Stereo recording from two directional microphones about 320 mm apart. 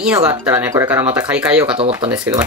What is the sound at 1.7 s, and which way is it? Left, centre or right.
Speech, centre.